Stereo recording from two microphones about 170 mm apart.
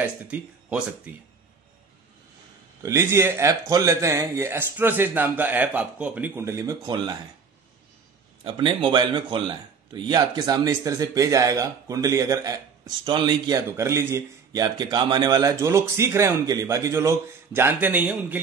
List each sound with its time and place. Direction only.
0.0 s speech: 5° right (ahead or behind)
2.8 s speech: 15° right (ahead or behind)
8.5 s a man's voice: 30° right (ahead or behind); by 18.4 s 10° right (ahead or behind)